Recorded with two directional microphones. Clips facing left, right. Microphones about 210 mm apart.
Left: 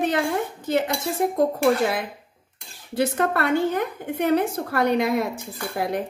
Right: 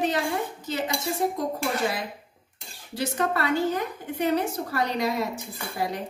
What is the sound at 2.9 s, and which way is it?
A woman's voice, 55° left (ahead or behind).